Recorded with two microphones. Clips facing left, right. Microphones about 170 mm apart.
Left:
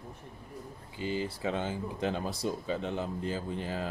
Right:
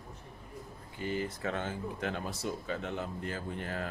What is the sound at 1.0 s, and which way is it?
Speech, 90° left.